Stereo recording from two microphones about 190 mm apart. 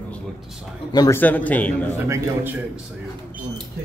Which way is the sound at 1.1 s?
10° left (ahead or behind).